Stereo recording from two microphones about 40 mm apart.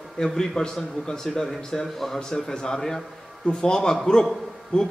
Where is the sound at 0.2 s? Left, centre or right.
Centre.